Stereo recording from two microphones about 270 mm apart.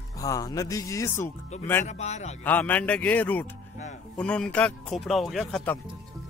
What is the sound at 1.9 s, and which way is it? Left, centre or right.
Speech, left.